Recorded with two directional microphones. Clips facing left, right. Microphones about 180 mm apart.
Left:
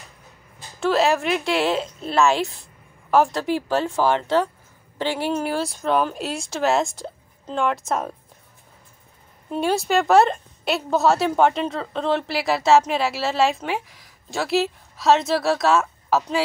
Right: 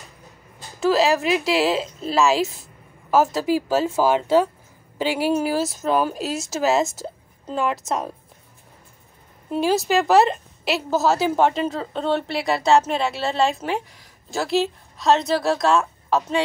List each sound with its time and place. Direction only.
0.7 s a woman's voice: centre (ahead or behind)
9.5 s a woman's voice: centre (ahead or behind)